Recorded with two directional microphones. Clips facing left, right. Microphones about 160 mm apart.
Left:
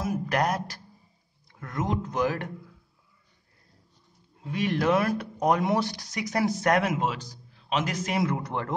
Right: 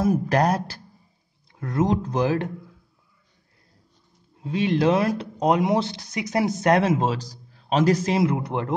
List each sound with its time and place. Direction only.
0.0 s speech: 35° right (ahead or behind)
4.4 s speech: 25° right (ahead or behind)